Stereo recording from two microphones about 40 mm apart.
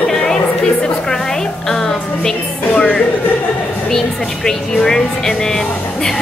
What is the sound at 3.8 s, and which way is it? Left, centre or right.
Speech, centre.